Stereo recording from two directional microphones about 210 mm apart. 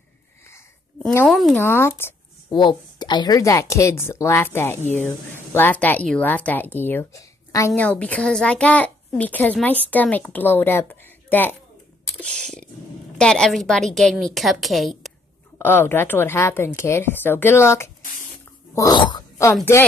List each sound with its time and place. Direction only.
1.0 s speech: 5° left (ahead or behind)
2.5 s speech: 20° left (ahead or behind)
18.8 s a sound: 20° left (ahead or behind)